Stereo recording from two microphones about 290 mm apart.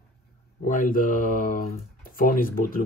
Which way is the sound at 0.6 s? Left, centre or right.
Left.